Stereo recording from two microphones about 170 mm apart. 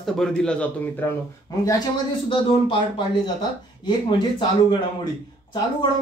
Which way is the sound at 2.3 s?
30° left (ahead or behind).